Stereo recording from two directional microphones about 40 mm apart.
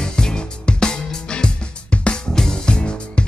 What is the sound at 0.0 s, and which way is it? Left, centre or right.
Music, centre.